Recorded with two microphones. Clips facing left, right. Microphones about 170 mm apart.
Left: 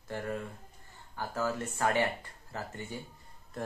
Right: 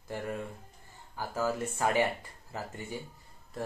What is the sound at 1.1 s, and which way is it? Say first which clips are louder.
Speech: right 1 dB; 10° right (ahead or behind).